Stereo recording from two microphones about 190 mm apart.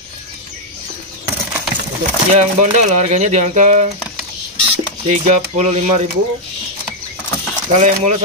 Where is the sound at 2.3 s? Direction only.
40° right (ahead or behind).